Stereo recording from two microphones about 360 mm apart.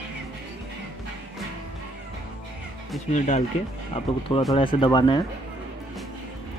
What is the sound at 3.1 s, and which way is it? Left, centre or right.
Speech, centre.